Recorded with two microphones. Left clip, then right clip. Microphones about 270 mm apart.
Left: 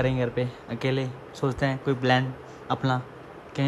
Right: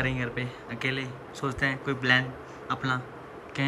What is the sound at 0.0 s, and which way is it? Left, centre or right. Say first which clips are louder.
Speech: left 4 dB; centre.